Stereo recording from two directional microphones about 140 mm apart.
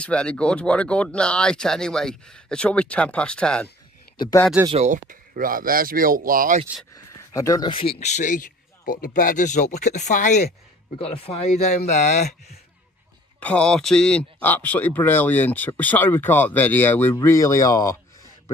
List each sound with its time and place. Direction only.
0.0 s a man's voice: 10° left (ahead or behind)
4.7 s speech: 60° right (ahead or behind); by 6.6 s 85° right
6.9 s a sound: 25° left (ahead or behind)
8.0 s speech: 60° left (ahead or behind)
11.0 s speech: 40° left (ahead or behind)
13.4 s a man's voice: 10° left (ahead or behind)